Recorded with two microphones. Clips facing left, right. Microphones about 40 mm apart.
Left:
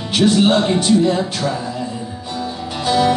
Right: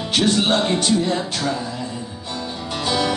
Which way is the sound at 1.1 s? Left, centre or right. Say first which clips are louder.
Left 4 dB; centre.